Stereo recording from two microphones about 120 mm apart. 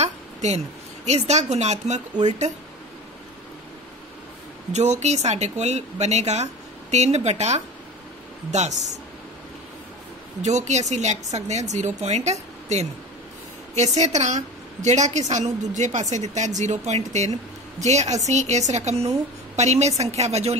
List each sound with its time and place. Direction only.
0.0 s a sound: 70° right (ahead or behind)
1.0 s a woman's voice: 70° right (ahead or behind)
4.7 s a woman's voice: 75° right (ahead or behind)
10.4 s a woman's voice: 75° right (ahead or behind)